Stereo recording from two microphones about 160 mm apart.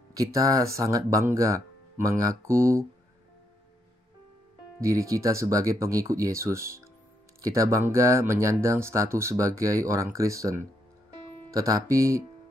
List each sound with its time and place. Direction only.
0.1 s speech: 20° right (ahead or behind)
4.7 s speech: 20° right (ahead or behind)
11.5 s speech: 20° right (ahead or behind)